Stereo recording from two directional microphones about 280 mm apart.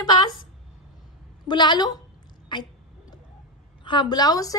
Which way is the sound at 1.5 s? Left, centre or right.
Centre.